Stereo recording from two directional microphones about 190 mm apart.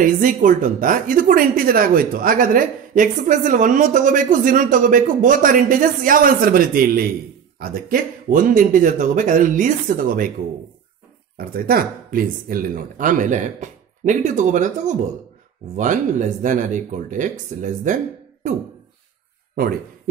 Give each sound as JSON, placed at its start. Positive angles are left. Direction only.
{"t": 0.0, "sound": "a woman's voice", "side_deg": -45}
{"t": 11.3, "sound": "a woman's voice", "side_deg": -50}